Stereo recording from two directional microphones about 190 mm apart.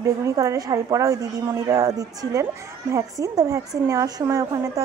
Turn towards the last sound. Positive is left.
turn(degrees=-15)  # may be behind; listen again after turning